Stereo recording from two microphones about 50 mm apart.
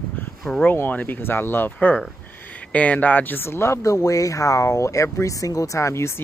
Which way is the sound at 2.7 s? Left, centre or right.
Left.